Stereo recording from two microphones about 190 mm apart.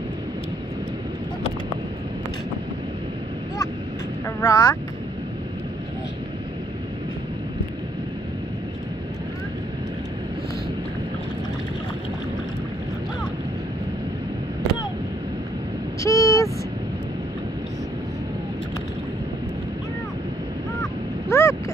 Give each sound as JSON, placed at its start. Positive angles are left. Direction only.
{"t": 4.4, "sound": "speech", "side_deg": 20}
{"t": 16.0, "sound": "vehicle", "side_deg": 15}
{"t": 21.3, "sound": "a sound", "side_deg": 15}